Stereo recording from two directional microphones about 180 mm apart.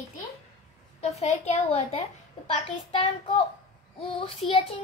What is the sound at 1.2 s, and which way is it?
A child's voice, 35° left (ahead or behind).